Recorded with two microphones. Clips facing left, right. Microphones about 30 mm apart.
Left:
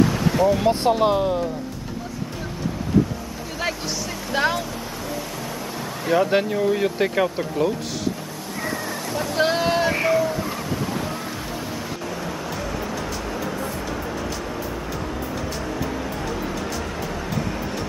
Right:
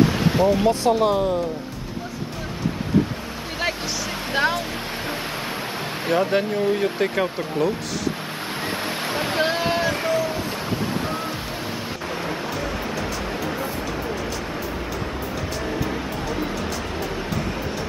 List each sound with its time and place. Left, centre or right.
0.0 s a sound: right
0.7 s speech: centre
4.3 s speech: centre
6.1 s speech: centre
8.5 s waves: right
9.4 s boat: centre
9.8 s speech: centre
10.1 s a sound: right
12.4 s music: right